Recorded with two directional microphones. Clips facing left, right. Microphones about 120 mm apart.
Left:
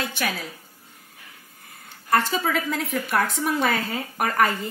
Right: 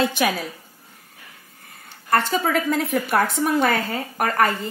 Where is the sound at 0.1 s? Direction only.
15° right (ahead or behind).